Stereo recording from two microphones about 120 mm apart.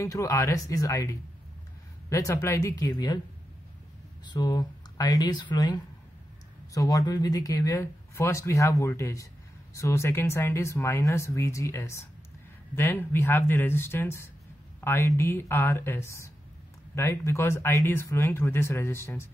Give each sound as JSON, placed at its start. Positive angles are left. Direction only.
{"t": 0.0, "sound": "speech", "side_deg": 25}
{"t": 4.3, "sound": "speech", "side_deg": 35}